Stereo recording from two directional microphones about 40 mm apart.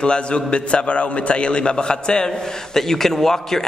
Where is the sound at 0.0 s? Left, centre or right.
Left.